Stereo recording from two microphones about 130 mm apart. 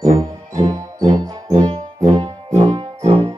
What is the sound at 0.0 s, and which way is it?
Music, 25° right (ahead or behind).